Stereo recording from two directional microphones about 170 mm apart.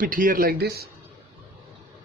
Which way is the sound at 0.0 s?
55° right (ahead or behind).